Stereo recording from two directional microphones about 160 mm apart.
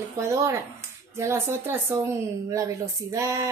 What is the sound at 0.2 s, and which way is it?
A child's voice, 20° right (ahead or behind).